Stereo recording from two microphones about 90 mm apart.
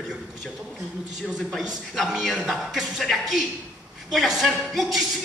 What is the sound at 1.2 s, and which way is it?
A man's voice, 5° right (ahead or behind).